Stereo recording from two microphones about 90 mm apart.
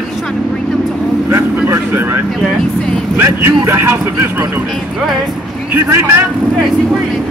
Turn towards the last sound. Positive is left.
turn(degrees=-25)  # may be behind; listen again after turning